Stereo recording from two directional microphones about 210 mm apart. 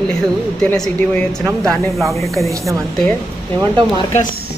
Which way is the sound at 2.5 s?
15° right (ahead or behind).